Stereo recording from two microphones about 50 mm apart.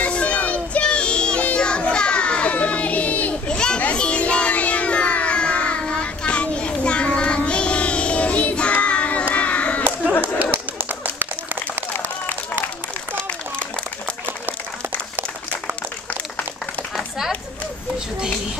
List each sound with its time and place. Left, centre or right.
0.0 s music: left
3.4 s children playing: centre
3.8 s child singing: left
9.3 s a sound: left
10.8 s run: right